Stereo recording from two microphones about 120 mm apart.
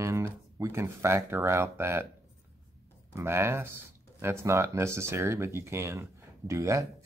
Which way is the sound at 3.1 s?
20° right (ahead or behind).